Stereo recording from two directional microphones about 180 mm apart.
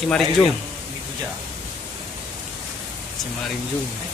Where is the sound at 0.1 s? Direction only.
5° left (ahead or behind).